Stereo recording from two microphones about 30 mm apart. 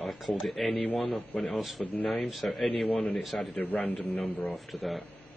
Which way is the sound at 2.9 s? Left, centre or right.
Left.